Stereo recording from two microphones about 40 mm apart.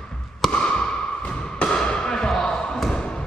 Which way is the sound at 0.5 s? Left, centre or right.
Left.